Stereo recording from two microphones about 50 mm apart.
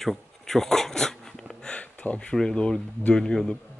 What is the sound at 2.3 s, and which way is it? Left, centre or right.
A man's voice, centre.